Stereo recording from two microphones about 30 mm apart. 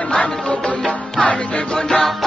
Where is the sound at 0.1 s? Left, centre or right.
Left.